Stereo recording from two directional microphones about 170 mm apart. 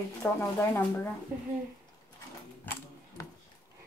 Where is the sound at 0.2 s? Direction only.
15° left (ahead or behind).